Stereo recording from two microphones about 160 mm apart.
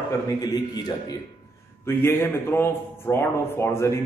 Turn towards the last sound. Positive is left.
turn(degrees=15)  # may be behind; listen again after turning